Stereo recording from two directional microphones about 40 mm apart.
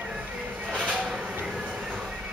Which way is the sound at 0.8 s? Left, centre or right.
Right.